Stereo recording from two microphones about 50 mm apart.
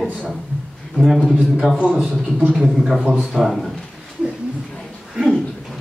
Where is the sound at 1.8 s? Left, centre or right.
Right.